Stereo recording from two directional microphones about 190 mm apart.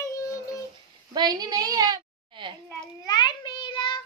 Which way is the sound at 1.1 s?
20° right (ahead or behind).